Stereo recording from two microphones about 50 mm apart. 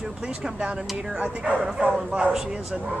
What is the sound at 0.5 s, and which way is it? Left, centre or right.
Speech, right.